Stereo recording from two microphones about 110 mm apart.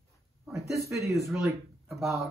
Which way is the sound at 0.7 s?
30° right (ahead or behind).